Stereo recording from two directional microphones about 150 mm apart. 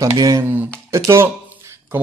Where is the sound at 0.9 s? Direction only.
20° right (ahead or behind).